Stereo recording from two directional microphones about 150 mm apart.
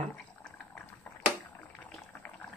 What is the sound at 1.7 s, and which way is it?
Boiling, 10° left (ahead or behind).